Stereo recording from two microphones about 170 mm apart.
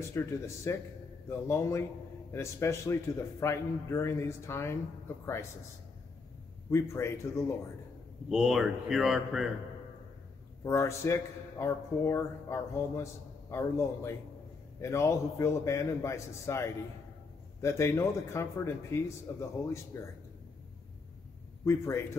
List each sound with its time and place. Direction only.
0.2 s speech: 15° left (ahead or behind)
6.7 s speech: 15° left (ahead or behind)
8.3 s a man's voice: 5° right (ahead or behind)
10.6 s speech: 15° left (ahead or behind)
21.6 s speech: 15° left (ahead or behind)